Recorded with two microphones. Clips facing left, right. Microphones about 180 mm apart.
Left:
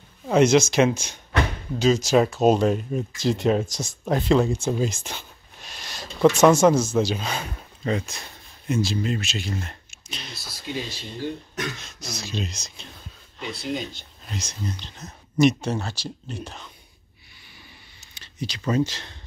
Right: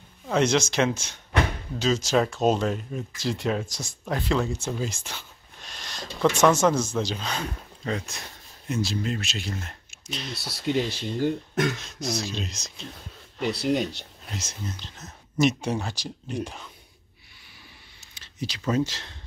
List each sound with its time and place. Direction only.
0.3 s speech: 10° left (ahead or behind)
5.6 s a sound: 10° left (ahead or behind)
6.5 s speech: 10° left (ahead or behind)
10.3 s speech: 70° right (ahead or behind)
11.8 s speech: centre (ahead or behind)
13.4 s speech: 70° right (ahead or behind)
14.3 s speech: 5° right (ahead or behind)
15.6 s speech: 15° right (ahead or behind)
18.1 s speech: centre (ahead or behind)